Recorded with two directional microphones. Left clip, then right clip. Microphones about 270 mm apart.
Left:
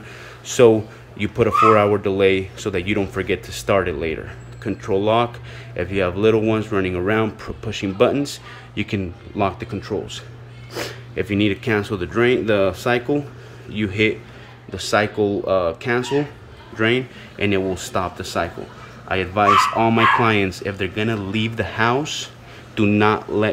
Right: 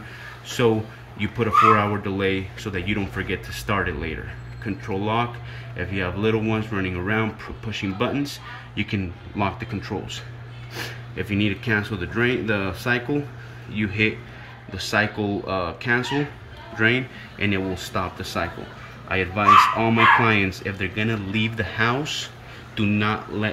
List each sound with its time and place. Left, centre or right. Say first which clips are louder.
0.5 s speech: left 8 dB; centre